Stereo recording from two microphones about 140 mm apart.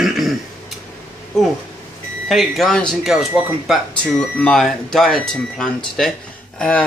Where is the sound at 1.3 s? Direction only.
Centre (ahead or behind).